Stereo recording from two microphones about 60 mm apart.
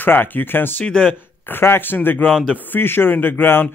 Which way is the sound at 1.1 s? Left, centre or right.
Left.